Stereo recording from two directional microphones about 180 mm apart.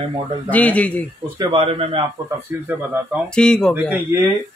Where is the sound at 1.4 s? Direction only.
30° right (ahead or behind).